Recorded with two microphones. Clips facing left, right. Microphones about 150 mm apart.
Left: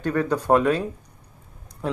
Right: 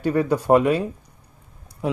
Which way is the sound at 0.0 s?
10° right (ahead or behind).